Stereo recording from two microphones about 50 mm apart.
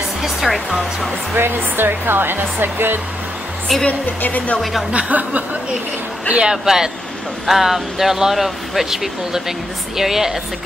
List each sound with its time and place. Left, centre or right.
0.2 s speech: centre
1.3 s speech: right
4.2 s speech: left
4.9 s chuckle: right
6.3 s speech: centre